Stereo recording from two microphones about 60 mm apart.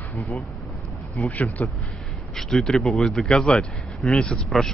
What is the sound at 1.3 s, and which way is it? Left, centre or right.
Speech, left.